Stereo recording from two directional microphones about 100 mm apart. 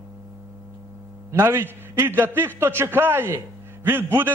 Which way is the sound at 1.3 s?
25° right (ahead or behind).